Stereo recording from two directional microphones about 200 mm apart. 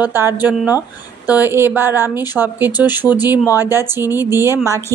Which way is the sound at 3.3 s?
10° right (ahead or behind).